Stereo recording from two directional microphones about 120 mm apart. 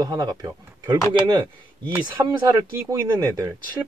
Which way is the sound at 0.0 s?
35° right (ahead or behind).